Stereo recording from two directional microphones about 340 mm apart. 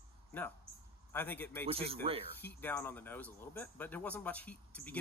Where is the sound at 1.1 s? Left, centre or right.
Centre.